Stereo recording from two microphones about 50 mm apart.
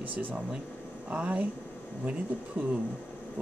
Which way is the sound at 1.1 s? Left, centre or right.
Right.